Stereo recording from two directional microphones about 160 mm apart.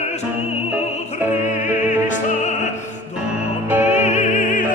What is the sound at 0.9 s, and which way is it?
Music, 50° left (ahead or behind).